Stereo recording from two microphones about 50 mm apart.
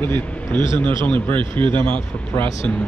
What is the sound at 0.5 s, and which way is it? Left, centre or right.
Speech, left.